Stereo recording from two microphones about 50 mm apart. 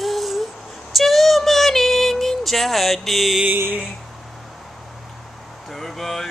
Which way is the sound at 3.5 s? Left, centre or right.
Right.